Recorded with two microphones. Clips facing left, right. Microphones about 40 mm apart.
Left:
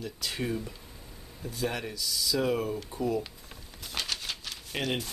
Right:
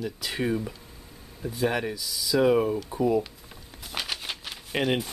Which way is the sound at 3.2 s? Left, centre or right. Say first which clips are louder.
Right 5 dB; centre.